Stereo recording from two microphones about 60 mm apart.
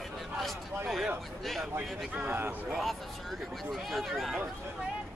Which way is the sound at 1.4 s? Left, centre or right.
Centre.